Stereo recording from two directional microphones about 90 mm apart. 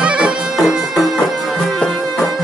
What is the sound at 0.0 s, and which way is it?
Music, 10° right (ahead or behind).